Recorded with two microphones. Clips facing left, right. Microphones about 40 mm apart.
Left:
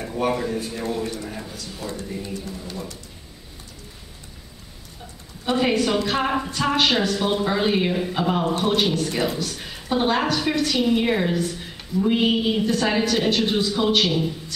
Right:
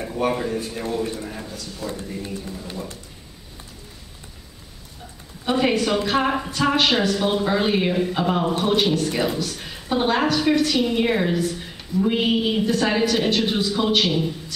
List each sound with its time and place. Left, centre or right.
0.0 s speech: centre
1.2 s a sound: centre
2.2 s speech: centre
5.4 s speech: centre